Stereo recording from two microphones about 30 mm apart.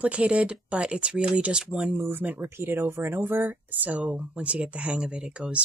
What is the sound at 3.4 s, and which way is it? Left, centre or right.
Speech, right.